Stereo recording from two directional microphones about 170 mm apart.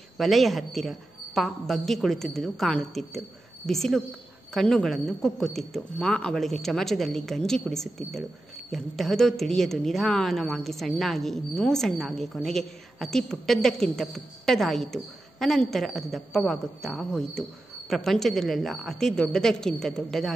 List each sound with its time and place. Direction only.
0.2 s a woman's voice: centre (ahead or behind)